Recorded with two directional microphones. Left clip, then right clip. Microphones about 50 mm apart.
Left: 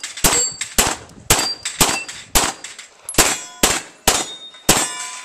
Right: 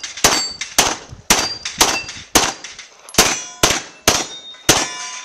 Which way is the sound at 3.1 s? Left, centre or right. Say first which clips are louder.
Right 2 dB; right.